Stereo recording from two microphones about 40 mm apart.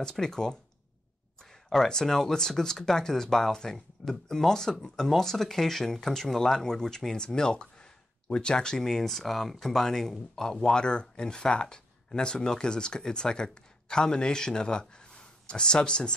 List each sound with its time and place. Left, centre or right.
0.0 s speech: centre
10.5 s speech: centre